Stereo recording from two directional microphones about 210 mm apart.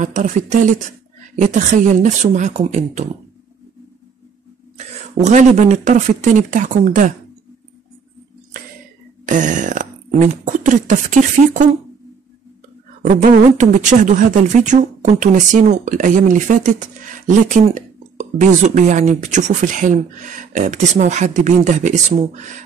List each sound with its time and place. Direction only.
0.0 s speech: 35° right (ahead or behind)
4.7 s speech: 35° right (ahead or behind)
9.2 s speech: 35° right (ahead or behind)
13.1 s speech: 35° right (ahead or behind)